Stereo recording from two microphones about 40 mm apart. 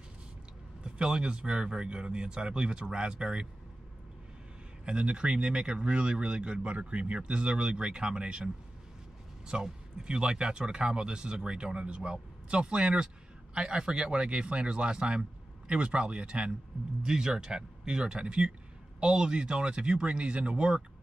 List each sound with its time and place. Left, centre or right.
0.8 s speech: right
4.8 s speech: right
9.5 s speech: right